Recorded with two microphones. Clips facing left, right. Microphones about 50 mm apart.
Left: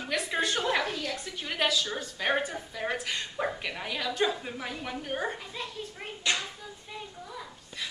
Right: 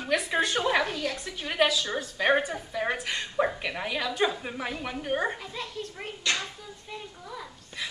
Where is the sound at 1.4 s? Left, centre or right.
Centre.